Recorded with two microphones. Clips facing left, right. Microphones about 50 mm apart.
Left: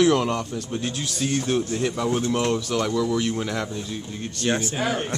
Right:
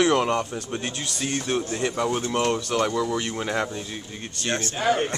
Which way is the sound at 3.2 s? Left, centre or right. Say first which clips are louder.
Left 1 dB; centre.